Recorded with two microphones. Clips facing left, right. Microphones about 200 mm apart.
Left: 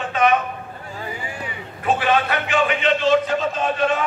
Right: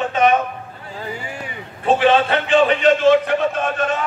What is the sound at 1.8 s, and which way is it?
A man's voice, 25° right (ahead or behind).